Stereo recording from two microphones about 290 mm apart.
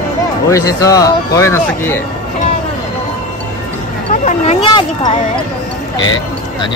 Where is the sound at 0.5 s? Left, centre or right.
Centre.